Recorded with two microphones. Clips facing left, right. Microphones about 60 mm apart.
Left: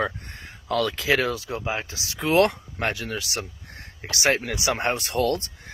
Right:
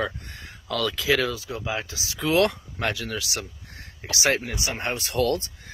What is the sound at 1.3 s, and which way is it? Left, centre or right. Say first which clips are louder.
Speech: left 3 dB; left.